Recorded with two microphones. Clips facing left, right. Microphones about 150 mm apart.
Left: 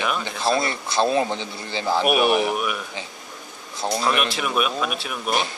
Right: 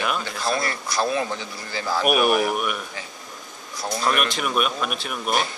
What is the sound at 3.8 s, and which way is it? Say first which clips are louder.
Speech: left 4 dB; 25° left (ahead or behind).